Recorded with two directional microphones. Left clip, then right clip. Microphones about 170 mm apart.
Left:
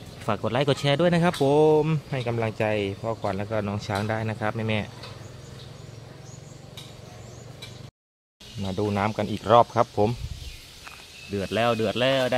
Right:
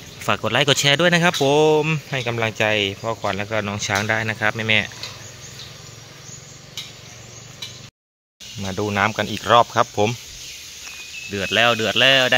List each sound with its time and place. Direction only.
0.3 s speech: 5° right (ahead or behind)
8.6 s speech: 5° right (ahead or behind); by 9.8 s 10° left (ahead or behind)
11.3 s speech: centre (ahead or behind)